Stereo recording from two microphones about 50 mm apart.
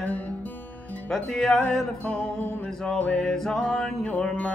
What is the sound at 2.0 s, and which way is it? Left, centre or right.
Music, left.